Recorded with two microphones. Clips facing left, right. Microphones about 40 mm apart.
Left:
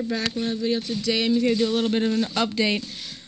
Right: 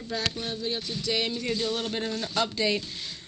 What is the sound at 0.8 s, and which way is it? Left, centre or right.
Speech, left.